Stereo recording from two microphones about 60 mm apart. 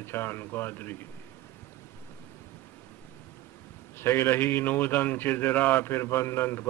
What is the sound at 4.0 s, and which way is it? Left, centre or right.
A man's voice, left.